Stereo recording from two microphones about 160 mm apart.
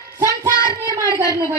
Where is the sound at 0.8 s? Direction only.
25° right (ahead or behind).